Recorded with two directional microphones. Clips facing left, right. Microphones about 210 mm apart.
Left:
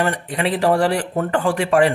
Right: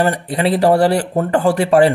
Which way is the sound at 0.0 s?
35° right (ahead or behind).